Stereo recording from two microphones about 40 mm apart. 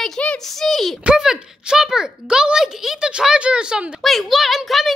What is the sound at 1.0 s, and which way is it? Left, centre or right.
A child's voice, centre.